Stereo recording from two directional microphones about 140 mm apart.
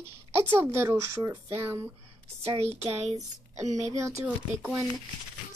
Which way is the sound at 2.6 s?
50° right (ahead or behind).